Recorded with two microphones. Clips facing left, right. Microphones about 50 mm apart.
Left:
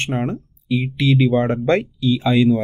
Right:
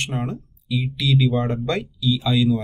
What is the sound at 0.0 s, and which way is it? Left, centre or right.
Speech, left.